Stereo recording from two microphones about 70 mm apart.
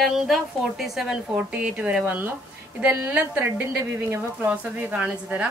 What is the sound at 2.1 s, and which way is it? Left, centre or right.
Speech, right.